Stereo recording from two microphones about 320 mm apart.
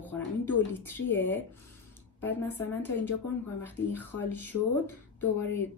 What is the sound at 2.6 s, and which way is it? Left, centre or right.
A woman's voice, centre.